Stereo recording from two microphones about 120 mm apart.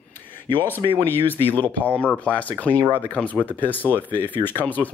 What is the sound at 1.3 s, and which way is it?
Speech, 15° left (ahead or behind).